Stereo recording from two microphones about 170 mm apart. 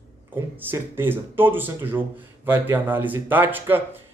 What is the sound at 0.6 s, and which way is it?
A man's voice, 15° right (ahead or behind).